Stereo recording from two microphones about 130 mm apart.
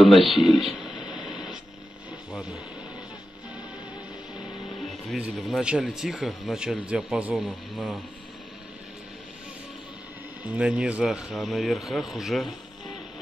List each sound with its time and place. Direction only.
0.0 s speech: centre (ahead or behind)
0.9 s radio: 35° left (ahead or behind)
1.3 s static: 5° right (ahead or behind)
5.1 s speech: 5° right (ahead or behind)
10.4 s speech: 10° right (ahead or behind)